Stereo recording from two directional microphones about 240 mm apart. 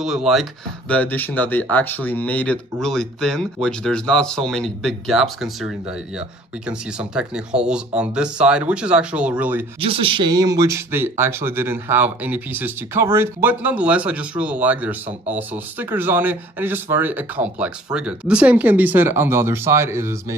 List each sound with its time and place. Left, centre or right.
0.0 s speech: centre
9.8 s speech: right